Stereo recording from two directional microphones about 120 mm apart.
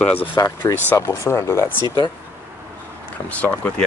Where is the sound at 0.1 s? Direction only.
15° left (ahead or behind).